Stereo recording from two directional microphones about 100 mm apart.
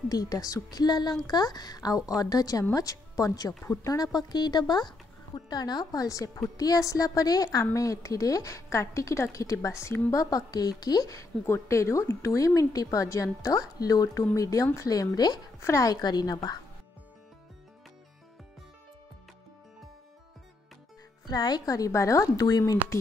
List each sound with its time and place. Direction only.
0.1 s a woman's voice: 40° left (ahead or behind)
21.3 s a woman's voice: 45° left (ahead or behind)